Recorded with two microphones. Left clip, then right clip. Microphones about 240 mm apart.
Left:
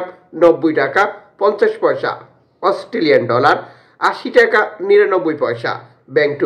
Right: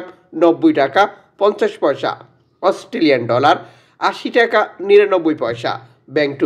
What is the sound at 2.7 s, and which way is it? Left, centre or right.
Speech, right.